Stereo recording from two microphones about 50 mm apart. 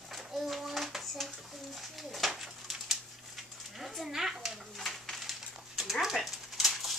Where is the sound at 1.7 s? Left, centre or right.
Centre.